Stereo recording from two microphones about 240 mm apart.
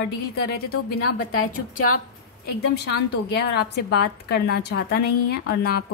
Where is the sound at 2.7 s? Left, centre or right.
Left.